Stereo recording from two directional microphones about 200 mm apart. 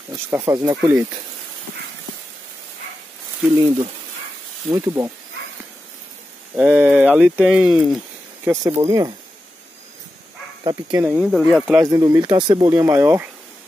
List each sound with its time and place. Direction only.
0.1 s speech: 15° right (ahead or behind)
3.6 s speech: 30° right (ahead or behind)
4.6 s speech: 15° right (ahead or behind)
6.5 s speech: 5° right (ahead or behind)
8.8 s speech: 15° right (ahead or behind)
10.6 s speech: 20° right (ahead or behind)
11.1 s speech: 5° right (ahead or behind)
11.6 s speech: 15° right (ahead or behind)